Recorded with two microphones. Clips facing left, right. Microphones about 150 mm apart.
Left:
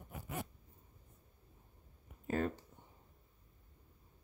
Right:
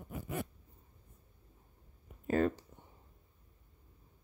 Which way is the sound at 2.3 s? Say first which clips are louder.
Right 6 dB; 90° right.